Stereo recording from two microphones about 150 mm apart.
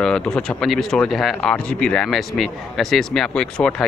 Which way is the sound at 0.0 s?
5° left (ahead or behind).